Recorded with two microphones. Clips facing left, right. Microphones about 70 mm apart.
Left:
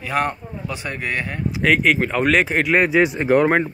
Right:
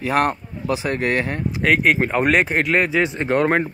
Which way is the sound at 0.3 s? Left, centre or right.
Right.